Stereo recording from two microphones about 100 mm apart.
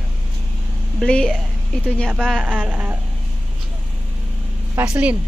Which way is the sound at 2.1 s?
5° right (ahead or behind).